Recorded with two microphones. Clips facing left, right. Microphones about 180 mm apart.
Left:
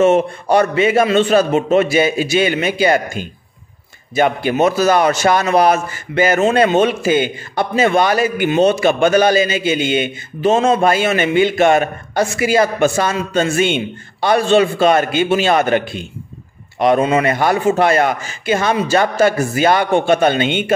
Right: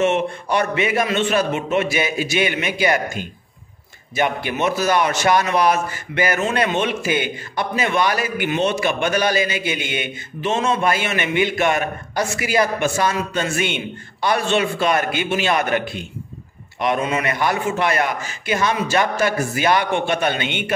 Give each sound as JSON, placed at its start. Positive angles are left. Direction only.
{"t": 0.0, "sound": "a man's voice", "side_deg": 35}
{"t": 4.1, "sound": "a man's voice", "side_deg": 30}